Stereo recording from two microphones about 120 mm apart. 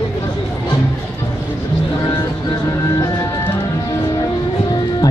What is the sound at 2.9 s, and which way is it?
Music, 25° left (ahead or behind).